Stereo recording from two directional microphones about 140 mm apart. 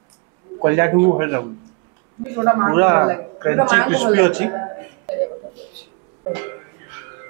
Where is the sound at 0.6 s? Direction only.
20° right (ahead or behind).